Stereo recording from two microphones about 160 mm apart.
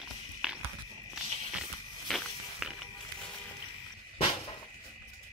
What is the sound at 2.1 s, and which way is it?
Walk, centre (ahead or behind).